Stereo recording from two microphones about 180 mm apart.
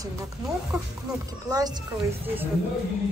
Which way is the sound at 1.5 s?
20° right (ahead or behind).